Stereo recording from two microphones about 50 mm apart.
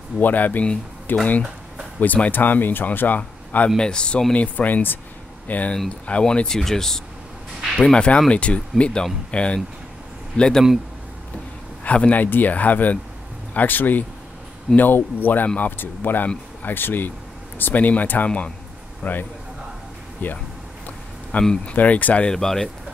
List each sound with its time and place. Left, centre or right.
0.2 s speech: left
2.0 s speech: left
2.4 s speech: left
3.7 s speech: centre
4.3 s speech: left
6.4 s speech: centre
11.8 s speech: left
20.2 s speech: left
21.4 s speech: centre
21.7 s speech: left
22.3 s speech: centre